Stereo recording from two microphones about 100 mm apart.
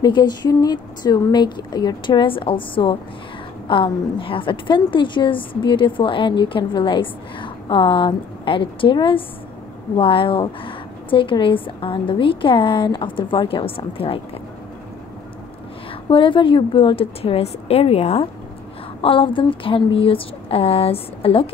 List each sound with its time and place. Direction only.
0.0 s a woman's voice: 45° left (ahead or behind); by 14.2 s 65° left (ahead or behind)
16.1 s speech: 60° left (ahead or behind); by 18.3 s 90° left
18.9 s speech: 60° left (ahead or behind)